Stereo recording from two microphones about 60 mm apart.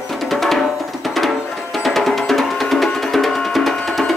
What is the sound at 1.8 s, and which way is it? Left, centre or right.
Music, centre.